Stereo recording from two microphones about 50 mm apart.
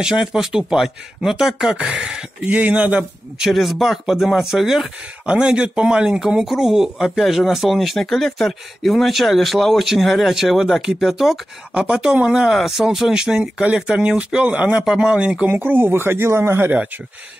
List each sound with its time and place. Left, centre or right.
0.0 s speech: centre
1.7 s speech: centre
2.4 s speech: right
3.4 s speech: centre
5.2 s speech: right
12.4 s speech: centre; by 15.5 s right
15.5 s speech: right